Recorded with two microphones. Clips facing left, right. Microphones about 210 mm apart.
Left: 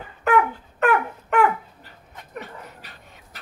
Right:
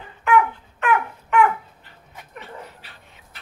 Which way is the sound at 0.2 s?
40° left (ahead or behind).